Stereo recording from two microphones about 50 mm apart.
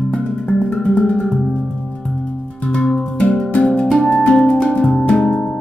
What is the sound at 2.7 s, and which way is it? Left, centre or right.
Music, centre.